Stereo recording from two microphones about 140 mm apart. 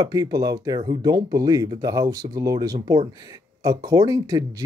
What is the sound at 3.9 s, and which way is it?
Speech, 25° right (ahead or behind).